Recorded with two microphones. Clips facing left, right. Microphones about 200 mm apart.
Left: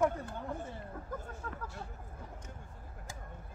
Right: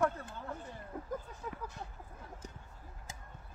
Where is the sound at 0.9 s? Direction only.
15° right (ahead or behind).